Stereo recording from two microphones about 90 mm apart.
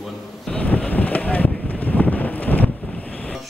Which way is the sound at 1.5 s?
5° left (ahead or behind).